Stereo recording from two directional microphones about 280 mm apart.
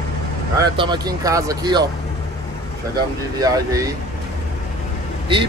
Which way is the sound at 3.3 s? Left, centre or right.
Centre.